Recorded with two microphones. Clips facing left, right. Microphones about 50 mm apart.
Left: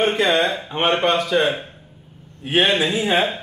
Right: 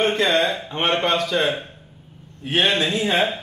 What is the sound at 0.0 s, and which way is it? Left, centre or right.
A man's voice, centre.